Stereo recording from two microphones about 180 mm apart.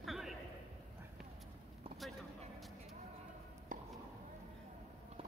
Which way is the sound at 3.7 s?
50° right (ahead or behind).